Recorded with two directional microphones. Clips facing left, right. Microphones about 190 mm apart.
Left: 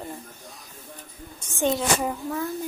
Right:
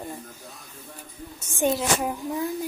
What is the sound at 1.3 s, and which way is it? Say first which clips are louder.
Speech: even; 10° right (ahead or behind).